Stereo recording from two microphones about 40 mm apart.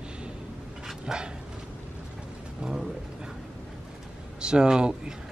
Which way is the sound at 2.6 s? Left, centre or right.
Centre.